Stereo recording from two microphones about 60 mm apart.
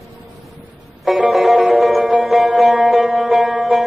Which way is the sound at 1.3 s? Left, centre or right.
Centre.